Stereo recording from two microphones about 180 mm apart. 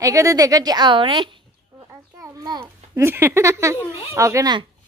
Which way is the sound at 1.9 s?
15° right (ahead or behind).